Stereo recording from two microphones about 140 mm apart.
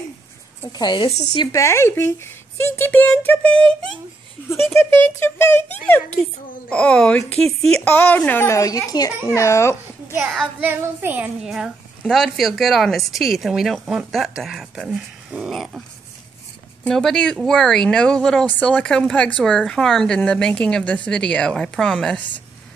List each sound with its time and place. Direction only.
0.7 s speech: 30° left (ahead or behind)
1.6 s speech: 20° left (ahead or behind)
4.7 s a woman's voice: 15° left (ahead or behind)
10.1 s child singing: 5° right (ahead or behind)
11.4 s speech: centre (ahead or behind)
16.8 s speech: 5° left (ahead or behind)